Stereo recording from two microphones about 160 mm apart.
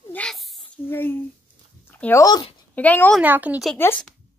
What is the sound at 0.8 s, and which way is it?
Speech, 15° left (ahead or behind).